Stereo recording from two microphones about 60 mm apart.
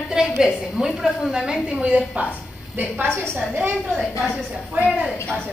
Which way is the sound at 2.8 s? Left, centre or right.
Right.